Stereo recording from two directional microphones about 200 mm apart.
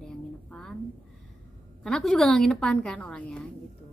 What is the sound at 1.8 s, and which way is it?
Speech, 5° left (ahead or behind).